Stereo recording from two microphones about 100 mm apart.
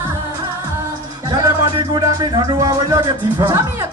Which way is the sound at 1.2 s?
35° right (ahead or behind).